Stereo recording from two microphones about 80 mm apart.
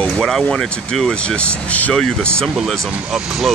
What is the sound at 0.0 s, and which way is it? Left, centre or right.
Speech, centre.